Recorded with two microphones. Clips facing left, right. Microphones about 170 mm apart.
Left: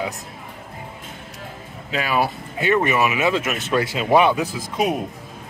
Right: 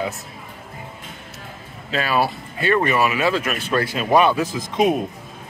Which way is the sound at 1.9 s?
15° left (ahead or behind).